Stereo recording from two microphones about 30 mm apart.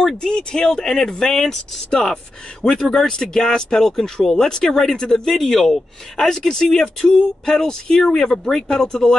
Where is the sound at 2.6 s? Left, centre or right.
Left.